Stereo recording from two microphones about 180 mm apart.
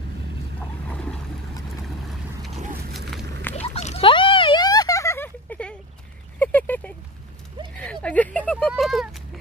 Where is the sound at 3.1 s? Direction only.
10° left (ahead or behind).